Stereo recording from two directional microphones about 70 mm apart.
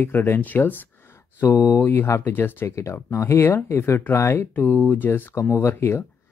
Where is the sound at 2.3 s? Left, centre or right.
Left.